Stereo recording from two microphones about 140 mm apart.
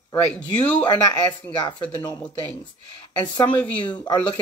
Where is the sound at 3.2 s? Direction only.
30° left (ahead or behind).